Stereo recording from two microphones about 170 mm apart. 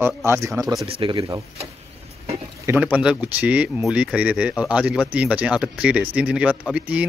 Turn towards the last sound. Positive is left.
turn(degrees=-5)  # may be behind; listen again after turning